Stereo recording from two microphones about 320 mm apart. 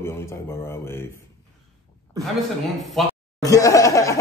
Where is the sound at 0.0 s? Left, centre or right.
Centre.